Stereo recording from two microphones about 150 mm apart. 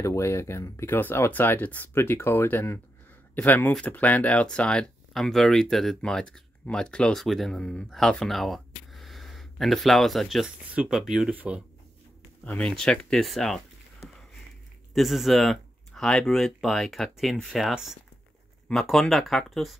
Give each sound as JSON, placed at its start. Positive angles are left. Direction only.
{"t": 0.0, "sound": "speech", "side_deg": 20}
{"t": 12.4, "sound": "speech", "side_deg": 5}